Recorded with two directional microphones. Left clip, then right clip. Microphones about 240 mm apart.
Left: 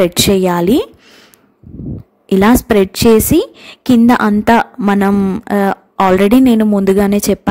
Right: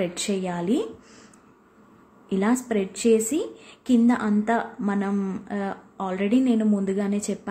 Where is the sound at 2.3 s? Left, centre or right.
Left.